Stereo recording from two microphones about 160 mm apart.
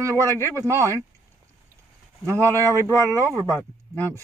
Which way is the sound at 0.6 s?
20° right (ahead or behind).